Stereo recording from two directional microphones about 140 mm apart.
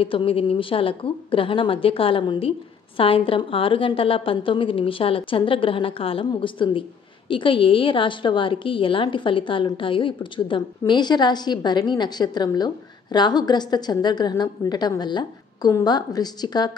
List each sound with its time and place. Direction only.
0.0 s a woman's voice: 40° left (ahead or behind)